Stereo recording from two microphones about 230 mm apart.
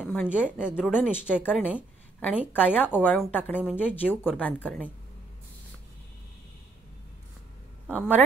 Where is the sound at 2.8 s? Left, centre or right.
Centre.